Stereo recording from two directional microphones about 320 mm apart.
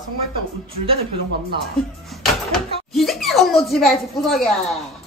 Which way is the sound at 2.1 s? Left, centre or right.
Centre.